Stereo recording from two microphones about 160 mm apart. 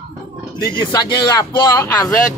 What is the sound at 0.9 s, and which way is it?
Speech, 25° left (ahead or behind).